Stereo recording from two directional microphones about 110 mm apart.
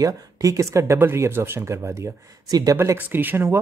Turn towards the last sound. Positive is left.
turn(degrees=-20)  # may be behind; listen again after turning